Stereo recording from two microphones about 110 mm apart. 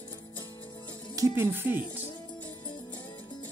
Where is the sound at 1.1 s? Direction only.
30° right (ahead or behind).